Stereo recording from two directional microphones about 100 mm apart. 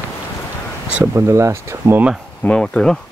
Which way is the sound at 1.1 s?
30° right (ahead or behind).